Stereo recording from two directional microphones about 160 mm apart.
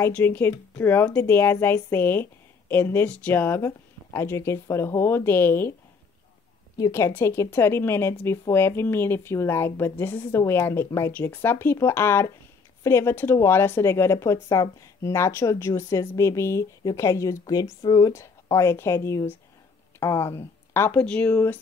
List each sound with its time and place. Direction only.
0.0 s a woman's voice: 10° left (ahead or behind)
6.8 s a woman's voice: 15° left (ahead or behind)